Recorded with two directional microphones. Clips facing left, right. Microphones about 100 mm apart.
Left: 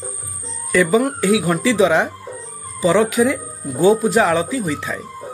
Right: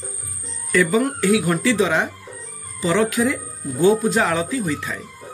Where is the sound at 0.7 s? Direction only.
15° left (ahead or behind).